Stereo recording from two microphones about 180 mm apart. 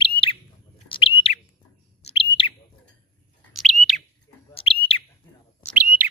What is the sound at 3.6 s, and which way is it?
Bird, centre (ahead or behind).